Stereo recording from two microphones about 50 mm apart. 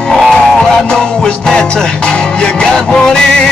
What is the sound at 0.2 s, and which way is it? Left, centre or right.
Music, centre.